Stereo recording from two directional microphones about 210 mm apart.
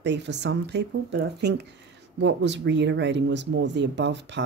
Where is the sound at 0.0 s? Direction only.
55° right (ahead or behind).